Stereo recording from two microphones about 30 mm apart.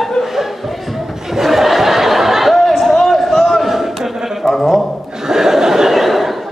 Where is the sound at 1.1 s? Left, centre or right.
Centre.